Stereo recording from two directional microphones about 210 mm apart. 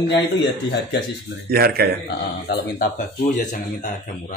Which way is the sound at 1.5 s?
45° right (ahead or behind).